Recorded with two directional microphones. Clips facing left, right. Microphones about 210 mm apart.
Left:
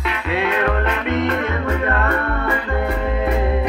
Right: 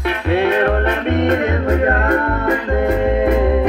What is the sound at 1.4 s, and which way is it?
Music, 40° right (ahead or behind).